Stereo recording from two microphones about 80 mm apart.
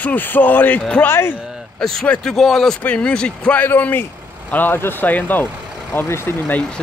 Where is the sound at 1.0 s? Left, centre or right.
Left.